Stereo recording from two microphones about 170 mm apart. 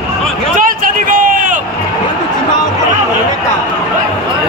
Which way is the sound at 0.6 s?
55° right (ahead or behind).